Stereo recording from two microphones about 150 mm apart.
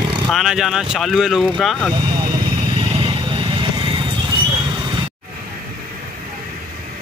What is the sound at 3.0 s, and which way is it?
Vehicle, 30° right (ahead or behind).